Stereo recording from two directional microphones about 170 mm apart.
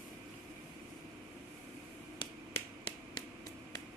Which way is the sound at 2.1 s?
30° left (ahead or behind).